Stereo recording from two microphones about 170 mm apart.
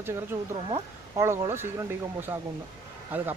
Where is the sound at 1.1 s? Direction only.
15° right (ahead or behind).